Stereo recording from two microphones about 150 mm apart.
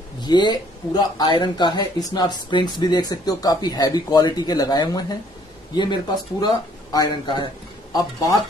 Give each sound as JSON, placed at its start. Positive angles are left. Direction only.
{"t": 0.2, "sound": "speech", "side_deg": 30}